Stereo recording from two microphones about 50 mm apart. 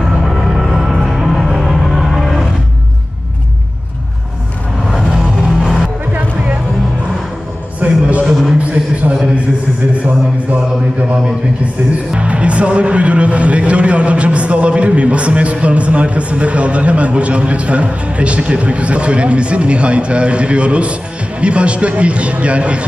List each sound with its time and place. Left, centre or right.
0.2 s music: centre
5.5 s music: centre
7.8 s music: right
8.3 s music: centre
8.5 s music: right
12.1 s speech: right